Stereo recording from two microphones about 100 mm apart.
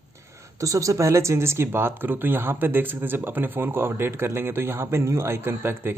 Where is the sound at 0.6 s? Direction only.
35° right (ahead or behind).